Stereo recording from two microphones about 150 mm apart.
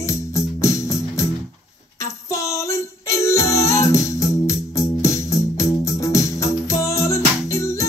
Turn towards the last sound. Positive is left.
turn(degrees=20)  # may be behind; listen again after turning